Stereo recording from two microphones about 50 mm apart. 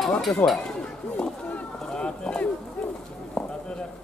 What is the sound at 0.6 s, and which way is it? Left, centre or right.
Run, centre.